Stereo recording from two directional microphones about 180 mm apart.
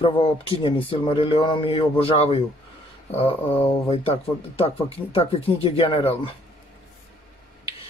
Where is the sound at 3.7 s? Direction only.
35° left (ahead or behind).